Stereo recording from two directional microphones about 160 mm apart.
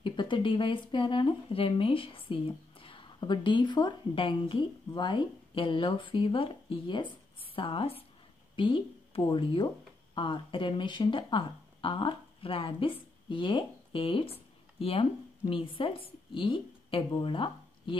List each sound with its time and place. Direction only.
0.0 s a woman's voice: 30° left (ahead or behind)